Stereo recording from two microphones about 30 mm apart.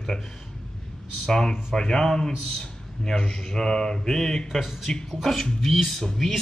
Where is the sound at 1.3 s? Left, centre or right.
Left.